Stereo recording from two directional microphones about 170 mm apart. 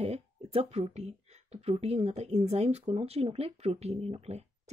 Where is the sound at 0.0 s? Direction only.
35° right (ahead or behind).